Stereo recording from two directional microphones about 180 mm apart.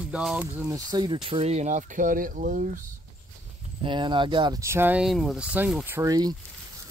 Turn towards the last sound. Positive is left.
turn(degrees=-20)  # may be behind; listen again after turning